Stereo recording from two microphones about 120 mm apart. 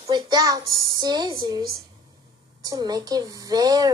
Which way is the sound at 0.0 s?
35° right (ahead or behind).